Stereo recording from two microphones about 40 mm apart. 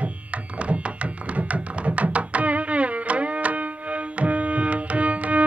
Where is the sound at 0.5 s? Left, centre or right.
Right.